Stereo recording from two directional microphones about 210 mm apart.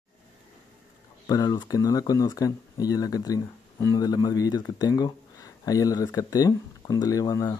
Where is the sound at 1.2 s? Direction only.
20° left (ahead or behind).